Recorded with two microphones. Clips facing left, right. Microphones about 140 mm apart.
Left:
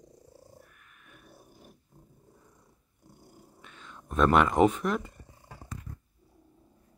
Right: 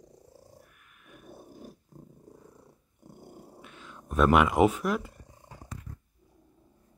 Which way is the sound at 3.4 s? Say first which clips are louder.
Right 6 dB; 65° right (ahead or behind).